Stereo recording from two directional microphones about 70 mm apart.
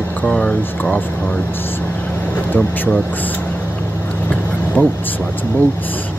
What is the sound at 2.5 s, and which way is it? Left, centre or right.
Speech, left.